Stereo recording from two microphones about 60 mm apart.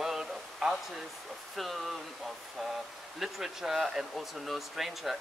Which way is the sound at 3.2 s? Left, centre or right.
Centre.